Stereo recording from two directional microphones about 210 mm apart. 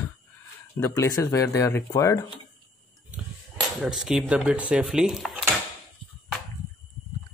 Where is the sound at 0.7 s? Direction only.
15° left (ahead or behind).